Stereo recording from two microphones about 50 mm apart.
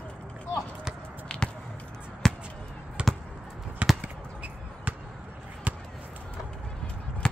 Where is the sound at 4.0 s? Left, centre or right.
Right.